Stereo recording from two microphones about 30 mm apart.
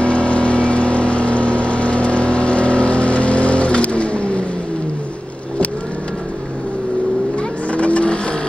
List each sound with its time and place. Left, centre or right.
0.0 s vehicle: left
7.7 s vehicle: left